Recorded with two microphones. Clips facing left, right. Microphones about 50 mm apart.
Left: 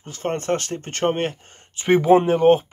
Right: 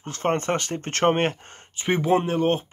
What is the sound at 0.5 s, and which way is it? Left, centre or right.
Speech, right.